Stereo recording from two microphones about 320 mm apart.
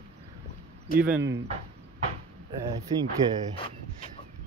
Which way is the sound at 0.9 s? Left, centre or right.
Centre.